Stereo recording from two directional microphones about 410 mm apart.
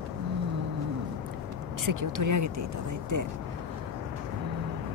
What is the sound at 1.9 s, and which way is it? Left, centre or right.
Speech, right.